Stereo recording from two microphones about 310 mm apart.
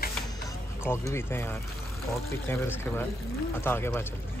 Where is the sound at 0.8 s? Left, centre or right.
Centre.